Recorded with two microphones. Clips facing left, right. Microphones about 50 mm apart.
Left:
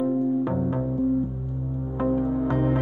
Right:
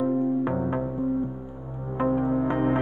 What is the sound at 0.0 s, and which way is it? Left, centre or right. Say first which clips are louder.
Music: left 1 dB; right.